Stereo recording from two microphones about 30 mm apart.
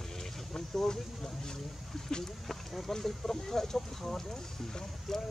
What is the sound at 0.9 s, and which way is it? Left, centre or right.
Speech, centre.